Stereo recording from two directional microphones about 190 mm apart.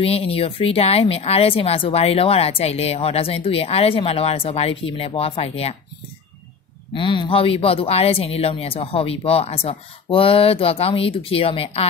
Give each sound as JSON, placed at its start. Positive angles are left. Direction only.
{"t": 0.0, "sound": "speech", "side_deg": 30}
{"t": 6.9, "sound": "speech", "side_deg": 25}